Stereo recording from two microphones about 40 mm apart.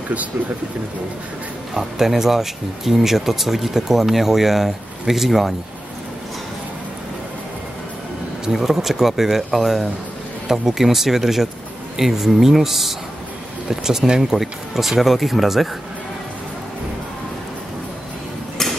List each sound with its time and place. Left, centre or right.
1.7 s speech: centre
8.5 s speech: centre